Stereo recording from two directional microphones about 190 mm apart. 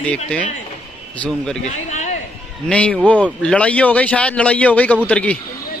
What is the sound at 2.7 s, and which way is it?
A man's voice, 5° left (ahead or behind).